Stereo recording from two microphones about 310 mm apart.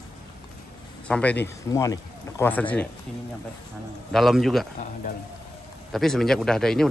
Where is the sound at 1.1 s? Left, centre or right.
Centre.